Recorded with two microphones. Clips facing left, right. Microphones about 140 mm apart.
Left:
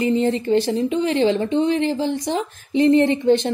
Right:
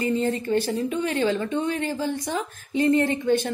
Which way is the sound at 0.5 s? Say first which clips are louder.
Left 5 dB; 25° left (ahead or behind).